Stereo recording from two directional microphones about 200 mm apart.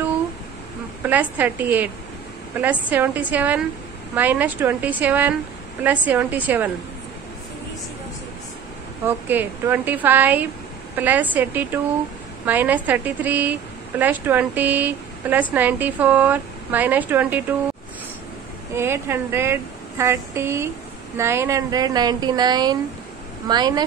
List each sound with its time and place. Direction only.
1.0 s a woman's voice: 10° right (ahead or behind)
9.0 s a woman's voice: 10° right (ahead or behind)
18.8 s a woman's voice: 10° right (ahead or behind)